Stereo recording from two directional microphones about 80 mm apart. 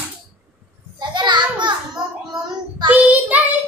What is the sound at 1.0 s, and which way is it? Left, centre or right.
Speech, right.